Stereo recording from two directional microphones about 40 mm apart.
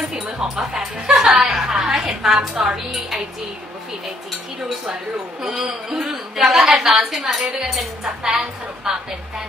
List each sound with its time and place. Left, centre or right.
0.1 s music: centre
1.9 s a woman's voice: centre
2.2 s a woman's voice: centre
5.4 s a woman's voice: centre